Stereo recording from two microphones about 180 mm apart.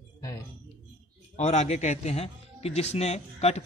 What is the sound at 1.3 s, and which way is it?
A man's voice, 40° left (ahead or behind).